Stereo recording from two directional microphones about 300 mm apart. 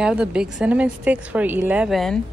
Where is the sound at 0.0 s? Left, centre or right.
Centre.